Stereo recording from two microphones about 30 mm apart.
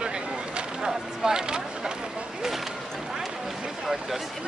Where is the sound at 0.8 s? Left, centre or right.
Right.